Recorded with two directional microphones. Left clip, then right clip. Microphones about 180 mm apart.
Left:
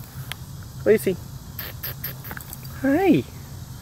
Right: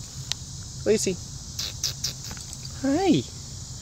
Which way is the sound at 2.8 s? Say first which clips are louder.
Left 4 dB; 15° right (ahead or behind).